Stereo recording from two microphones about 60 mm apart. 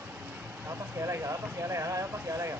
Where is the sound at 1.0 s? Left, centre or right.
Right.